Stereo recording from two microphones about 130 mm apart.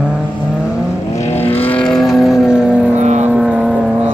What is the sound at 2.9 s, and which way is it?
Vehicle, 60° right (ahead or behind).